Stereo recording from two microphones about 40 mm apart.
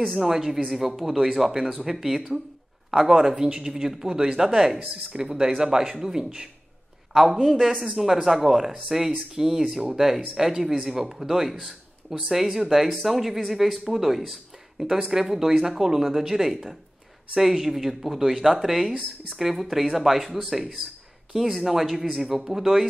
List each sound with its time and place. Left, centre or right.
0.2 s speech: centre
7.4 s speech: centre